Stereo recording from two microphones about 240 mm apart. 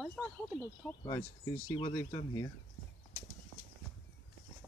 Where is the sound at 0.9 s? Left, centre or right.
Centre.